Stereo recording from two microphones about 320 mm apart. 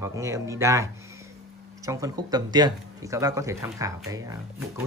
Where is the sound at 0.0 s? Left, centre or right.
Centre.